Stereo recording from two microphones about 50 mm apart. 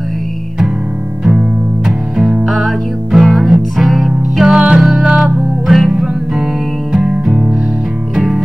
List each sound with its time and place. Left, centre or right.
1.9 s music: centre
4.5 s music: centre
4.8 s music: centre